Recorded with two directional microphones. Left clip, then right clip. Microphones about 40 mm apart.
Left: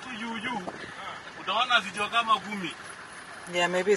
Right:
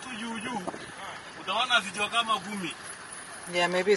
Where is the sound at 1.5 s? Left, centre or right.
Left.